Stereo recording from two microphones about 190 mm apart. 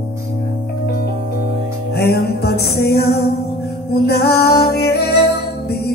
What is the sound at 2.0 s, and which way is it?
Music, 55° left (ahead or behind).